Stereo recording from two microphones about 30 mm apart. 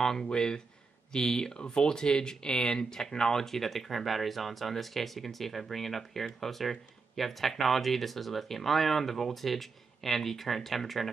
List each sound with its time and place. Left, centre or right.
0.2 s speech: left; by 11.1 s centre